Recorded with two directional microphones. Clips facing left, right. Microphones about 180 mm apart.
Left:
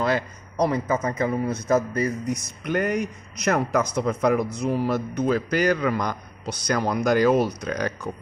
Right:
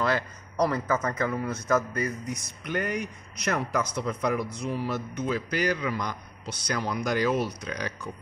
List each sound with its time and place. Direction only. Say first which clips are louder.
0.0 s a man's voice: left 3 dB; 20° left (ahead or behind)
1.8 s a man's voice: left 5 dB; 35° left (ahead or behind)